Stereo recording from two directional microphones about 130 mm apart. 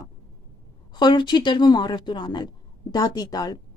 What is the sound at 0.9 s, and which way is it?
Speech, 35° left (ahead or behind).